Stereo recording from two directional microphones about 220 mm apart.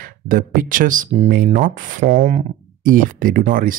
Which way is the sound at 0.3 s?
40° right (ahead or behind).